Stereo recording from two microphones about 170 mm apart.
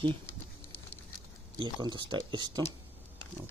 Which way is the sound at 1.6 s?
30° right (ahead or behind).